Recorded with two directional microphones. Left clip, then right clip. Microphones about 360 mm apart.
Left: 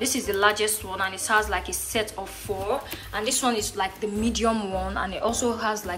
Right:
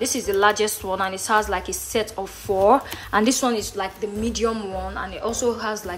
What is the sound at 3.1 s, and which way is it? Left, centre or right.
Speech, right.